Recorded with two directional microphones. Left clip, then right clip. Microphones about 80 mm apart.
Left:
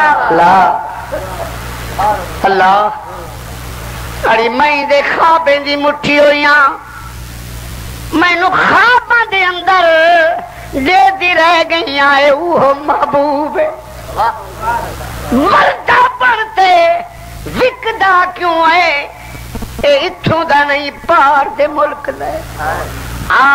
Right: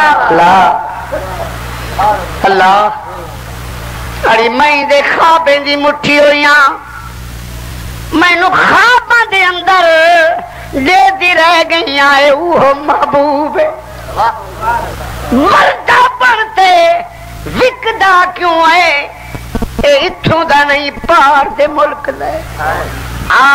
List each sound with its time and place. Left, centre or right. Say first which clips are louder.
0.0 s speech: right 2 dB; right
4.2 s speech: right 2 dB; right
8.1 s a man's voice: right 2 dB; right